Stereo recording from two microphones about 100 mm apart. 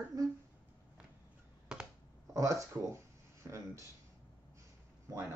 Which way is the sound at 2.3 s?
30° right (ahead or behind).